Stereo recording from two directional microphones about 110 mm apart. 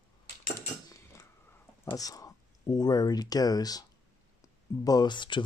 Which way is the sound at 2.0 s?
35° left (ahead or behind).